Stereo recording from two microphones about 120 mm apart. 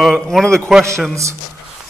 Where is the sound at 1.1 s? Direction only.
25° right (ahead or behind).